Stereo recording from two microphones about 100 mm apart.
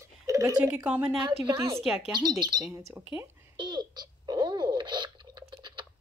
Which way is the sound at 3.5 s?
50° right (ahead or behind).